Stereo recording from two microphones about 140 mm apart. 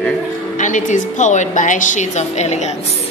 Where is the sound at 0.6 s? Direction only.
65° left (ahead or behind).